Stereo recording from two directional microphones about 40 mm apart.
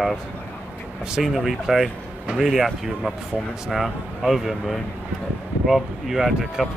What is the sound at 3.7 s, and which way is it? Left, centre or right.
Speech, centre.